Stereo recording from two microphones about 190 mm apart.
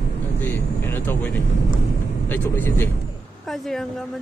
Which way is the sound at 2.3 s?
10° left (ahead or behind).